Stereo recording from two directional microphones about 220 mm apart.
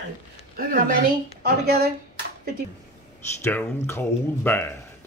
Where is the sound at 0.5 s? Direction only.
40° right (ahead or behind).